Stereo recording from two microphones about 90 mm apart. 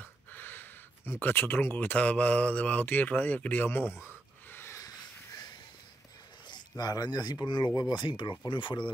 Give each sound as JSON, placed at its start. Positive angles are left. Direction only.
{"t": 0.0, "sound": "speech", "side_deg": 20}
{"t": 4.5, "sound": "a sound", "side_deg": 25}
{"t": 4.7, "sound": "crow", "side_deg": 40}
{"t": 6.8, "sound": "speech", "side_deg": 45}